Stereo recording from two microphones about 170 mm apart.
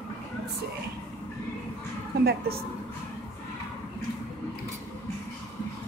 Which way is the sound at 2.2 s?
65° right (ahead or behind).